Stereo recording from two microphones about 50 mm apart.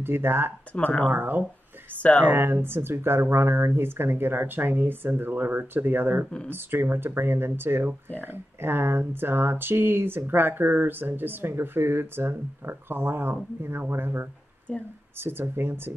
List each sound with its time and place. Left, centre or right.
0.0 s speech: right
0.7 s speech: left
1.0 s speech: right
2.0 s speech: left
2.2 s speech: right
14.7 s speech: left
15.1 s speech: right